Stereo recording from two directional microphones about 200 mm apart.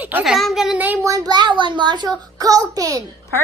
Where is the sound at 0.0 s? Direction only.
5° right (ahead or behind).